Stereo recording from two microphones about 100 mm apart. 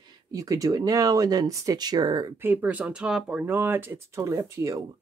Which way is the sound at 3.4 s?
20° right (ahead or behind).